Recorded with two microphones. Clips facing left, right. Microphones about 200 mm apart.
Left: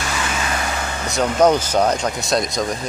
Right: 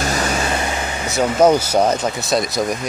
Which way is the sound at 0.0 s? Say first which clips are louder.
Right 4 dB; 40° right (ahead or behind).